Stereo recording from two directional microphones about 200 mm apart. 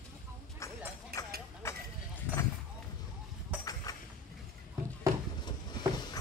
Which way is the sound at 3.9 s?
15° left (ahead or behind).